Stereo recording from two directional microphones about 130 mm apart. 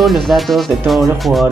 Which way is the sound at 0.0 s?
Centre (ahead or behind).